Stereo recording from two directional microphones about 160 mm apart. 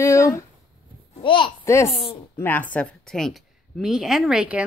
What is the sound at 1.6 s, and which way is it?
A child's voice, 15° left (ahead or behind).